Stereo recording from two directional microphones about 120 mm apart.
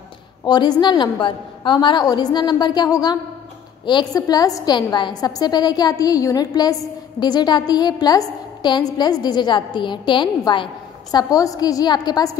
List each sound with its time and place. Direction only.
0.5 s a woman's voice: 35° left (ahead or behind)